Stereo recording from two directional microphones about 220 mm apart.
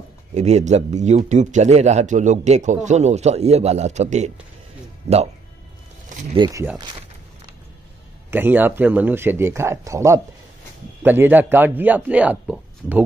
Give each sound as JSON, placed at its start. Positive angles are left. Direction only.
{"t": 0.3, "sound": "speech", "side_deg": -30}
{"t": 6.8, "sound": "a sound", "side_deg": -20}
{"t": 8.3, "sound": "a man's voice", "side_deg": -10}